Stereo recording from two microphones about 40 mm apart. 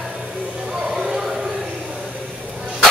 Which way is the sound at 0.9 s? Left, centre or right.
Centre.